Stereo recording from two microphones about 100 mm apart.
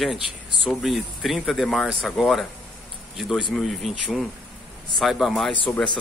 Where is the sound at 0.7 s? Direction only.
Centre (ahead or behind).